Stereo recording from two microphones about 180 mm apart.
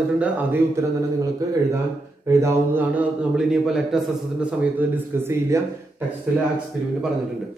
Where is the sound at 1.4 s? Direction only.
20° right (ahead or behind).